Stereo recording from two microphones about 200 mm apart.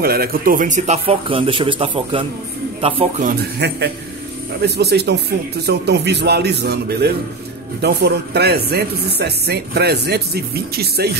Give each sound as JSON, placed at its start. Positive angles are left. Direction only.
{"t": 0.0, "sound": "a man's voice", "side_deg": -50}
{"t": 3.3, "sound": "a man's voice", "side_deg": -55}